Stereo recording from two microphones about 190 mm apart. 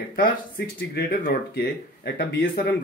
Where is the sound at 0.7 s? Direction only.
55° left (ahead or behind).